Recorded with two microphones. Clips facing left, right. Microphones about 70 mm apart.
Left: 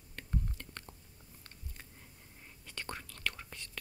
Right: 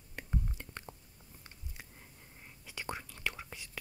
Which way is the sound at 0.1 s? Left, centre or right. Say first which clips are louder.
Right 1 dB; centre.